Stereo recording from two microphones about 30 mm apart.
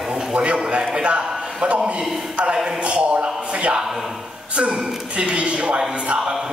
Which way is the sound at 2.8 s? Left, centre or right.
Right.